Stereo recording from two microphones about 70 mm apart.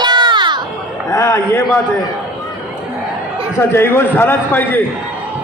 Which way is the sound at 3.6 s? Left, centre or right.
Left.